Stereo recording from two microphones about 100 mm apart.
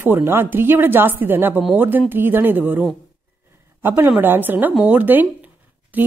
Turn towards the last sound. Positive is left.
turn(degrees=-15)  # may be behind; listen again after turning